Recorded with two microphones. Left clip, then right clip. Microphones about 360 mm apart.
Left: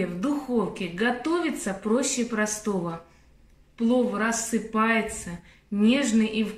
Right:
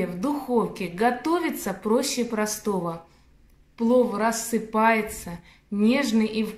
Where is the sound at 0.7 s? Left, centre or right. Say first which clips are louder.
Right 3 dB; centre.